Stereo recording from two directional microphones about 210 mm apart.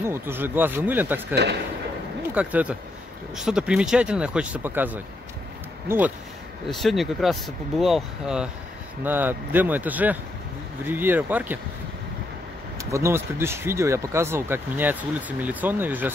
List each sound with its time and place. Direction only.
0.0 s speech: 10° right (ahead or behind)
1.3 s a man's voice: 50° right (ahead or behind)
2.3 s speech: 5° right (ahead or behind)
12.7 s speech: 15° right (ahead or behind)